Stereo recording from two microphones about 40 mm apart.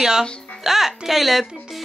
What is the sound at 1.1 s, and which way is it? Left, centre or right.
Speech, centre.